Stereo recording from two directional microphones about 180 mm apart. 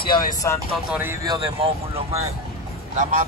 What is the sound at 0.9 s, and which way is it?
Speech, 10° right (ahead or behind).